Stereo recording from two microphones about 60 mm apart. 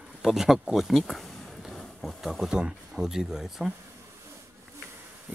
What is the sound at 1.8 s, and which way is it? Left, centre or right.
Speech, centre.